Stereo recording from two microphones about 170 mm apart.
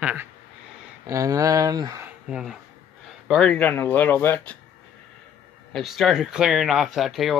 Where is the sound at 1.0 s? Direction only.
20° right (ahead or behind).